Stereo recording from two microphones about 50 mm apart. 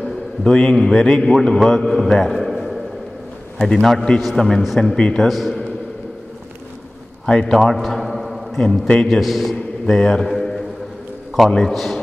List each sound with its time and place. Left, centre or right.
0.0 s a man's voice: centre
4.9 s a man's voice: centre
5.3 s a man's voice: centre
7.2 s a man's voice: centre
7.5 s a sound: centre
8.5 s a man's voice: centre
9.2 s a man's voice: centre
9.8 s a man's voice: centre
10.2 s a sound: centre
11.4 s a man's voice: centre